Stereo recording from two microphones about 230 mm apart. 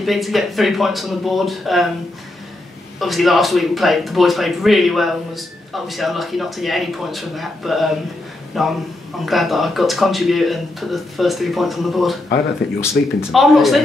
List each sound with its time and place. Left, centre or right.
0.0 s speech: centre
3.0 s speech: centre
13.0 s speech: left
13.3 s speech: centre